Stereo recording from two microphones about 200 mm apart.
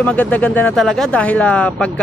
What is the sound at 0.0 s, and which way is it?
Speech, 10° left (ahead or behind).